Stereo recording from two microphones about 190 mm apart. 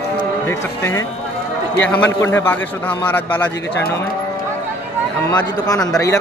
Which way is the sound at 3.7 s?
60° left (ahead or behind).